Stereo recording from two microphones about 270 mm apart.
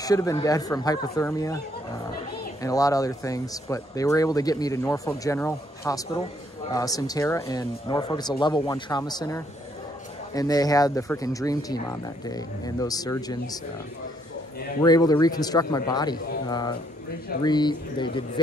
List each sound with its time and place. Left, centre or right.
0.0 s speech: centre
2.6 s speech: centre
14.8 s speech: centre